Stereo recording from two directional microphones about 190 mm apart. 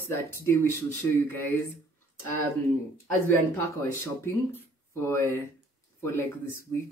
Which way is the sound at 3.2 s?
10° left (ahead or behind).